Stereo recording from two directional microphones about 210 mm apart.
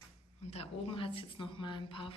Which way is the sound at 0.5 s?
25° left (ahead or behind).